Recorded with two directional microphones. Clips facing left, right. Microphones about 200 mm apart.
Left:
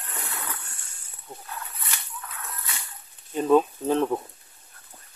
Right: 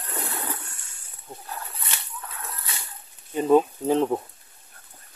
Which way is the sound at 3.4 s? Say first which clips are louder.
Right 1 dB; 15° right (ahead or behind).